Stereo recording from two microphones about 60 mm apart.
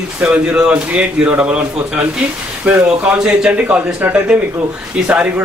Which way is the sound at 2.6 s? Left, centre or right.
Centre.